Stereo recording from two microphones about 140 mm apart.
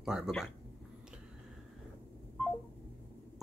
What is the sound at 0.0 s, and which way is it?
Speech, 5° right (ahead or behind).